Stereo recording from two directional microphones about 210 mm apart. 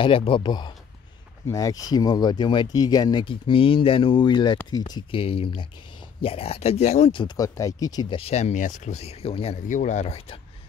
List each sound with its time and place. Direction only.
0.0 s speech: 25° left (ahead or behind)